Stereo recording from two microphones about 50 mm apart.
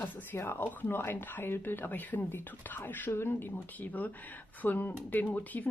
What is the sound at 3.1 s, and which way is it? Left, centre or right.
Speech, left.